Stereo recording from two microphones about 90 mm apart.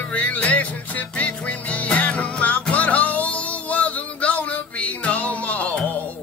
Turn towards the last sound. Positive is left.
turn(degrees=15)  # may be behind; listen again after turning